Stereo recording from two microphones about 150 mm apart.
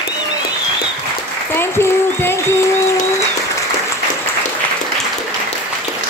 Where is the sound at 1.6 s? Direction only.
15° left (ahead or behind).